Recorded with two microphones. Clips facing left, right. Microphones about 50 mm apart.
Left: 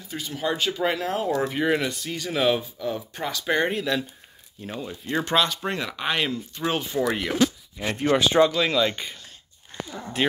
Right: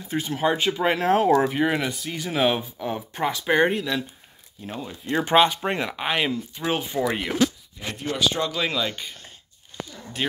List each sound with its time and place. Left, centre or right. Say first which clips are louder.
0.1 s speech: right 5 dB; right
0.9 s speech: right 7 dB; right
1.5 s speech: even; centre
2.8 s speech: right 3 dB; right; by 4.9 s centre
5.2 s speech: right 6 dB; right
7.8 s speech: left 7 dB; left
8.2 s speech: left 5 dB; left
8.5 s speech: left 3 dB; centre
9.7 s a sound: even; left